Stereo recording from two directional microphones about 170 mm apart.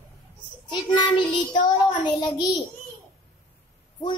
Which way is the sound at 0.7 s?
25° left (ahead or behind).